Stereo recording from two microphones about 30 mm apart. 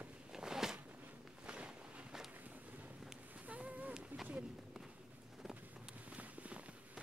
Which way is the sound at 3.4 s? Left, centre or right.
Right.